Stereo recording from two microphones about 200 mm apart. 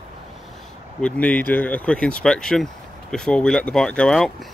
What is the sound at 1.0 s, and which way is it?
Speech, 5° left (ahead or behind).